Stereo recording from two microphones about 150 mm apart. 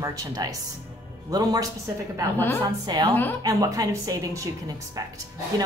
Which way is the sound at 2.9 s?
25° right (ahead or behind).